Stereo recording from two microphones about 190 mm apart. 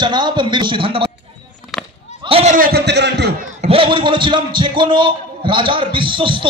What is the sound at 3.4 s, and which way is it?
A man's voice, 35° right (ahead or behind).